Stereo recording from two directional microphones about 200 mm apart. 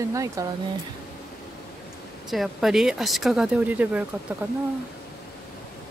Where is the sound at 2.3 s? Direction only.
Centre (ahead or behind).